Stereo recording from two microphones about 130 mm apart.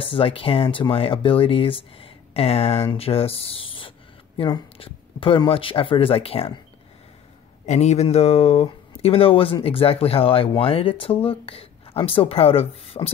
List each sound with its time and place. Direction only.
0.0 s speech: 45° left (ahead or behind)
7.6 s speech: 60° left (ahead or behind)